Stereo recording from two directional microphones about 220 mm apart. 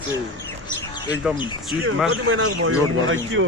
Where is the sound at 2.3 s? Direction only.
70° right (ahead or behind).